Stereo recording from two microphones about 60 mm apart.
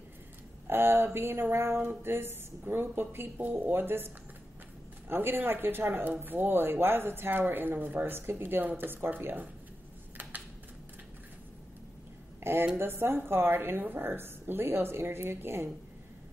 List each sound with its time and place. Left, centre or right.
0.7 s speech: right
12.7 s speech: right